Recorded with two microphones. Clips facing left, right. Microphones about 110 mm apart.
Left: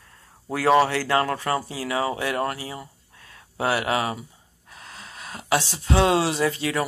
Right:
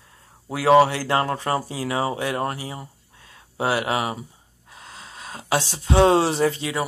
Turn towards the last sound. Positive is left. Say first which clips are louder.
# right 3 dB
turn(degrees=-35)  # may be behind; listen again after turning